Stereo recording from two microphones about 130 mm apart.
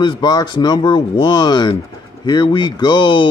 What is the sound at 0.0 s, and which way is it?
A man's voice, 35° left (ahead or behind).